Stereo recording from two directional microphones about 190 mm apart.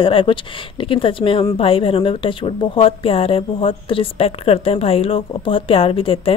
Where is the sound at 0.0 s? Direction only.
25° left (ahead or behind).